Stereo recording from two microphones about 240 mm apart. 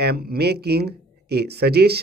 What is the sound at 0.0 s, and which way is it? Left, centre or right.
Speech, right.